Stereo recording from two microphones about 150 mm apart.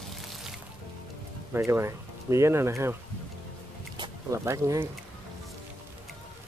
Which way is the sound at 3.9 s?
30° right (ahead or behind).